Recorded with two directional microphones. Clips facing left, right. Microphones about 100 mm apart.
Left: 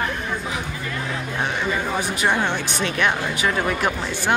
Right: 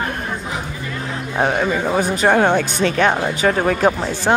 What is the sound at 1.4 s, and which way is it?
Speech, 45° right (ahead or behind).